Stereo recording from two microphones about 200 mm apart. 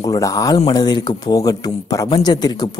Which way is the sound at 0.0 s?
15° left (ahead or behind).